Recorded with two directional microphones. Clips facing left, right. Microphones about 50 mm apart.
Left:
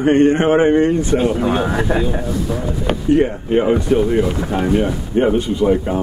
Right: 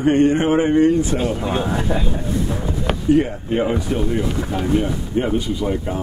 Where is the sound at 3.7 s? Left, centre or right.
Left.